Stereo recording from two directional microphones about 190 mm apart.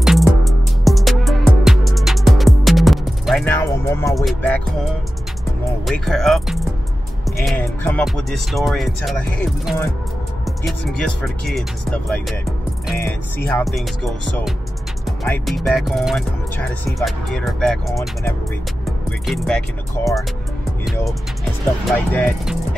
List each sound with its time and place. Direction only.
0.0 s music: centre (ahead or behind)
3.5 s music: 15° left (ahead or behind)
4.1 s music: centre (ahead or behind)
5.9 s music: centre (ahead or behind)
7.2 s speech: centre (ahead or behind)
7.6 s speech: 10° left (ahead or behind)
8.0 s music: centre (ahead or behind)
21.8 s speech: 10° left (ahead or behind)